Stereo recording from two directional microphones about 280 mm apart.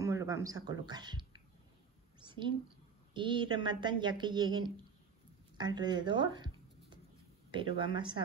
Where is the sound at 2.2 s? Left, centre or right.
Centre.